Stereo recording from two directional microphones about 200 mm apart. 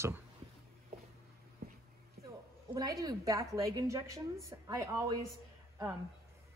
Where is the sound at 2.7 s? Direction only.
20° right (ahead or behind).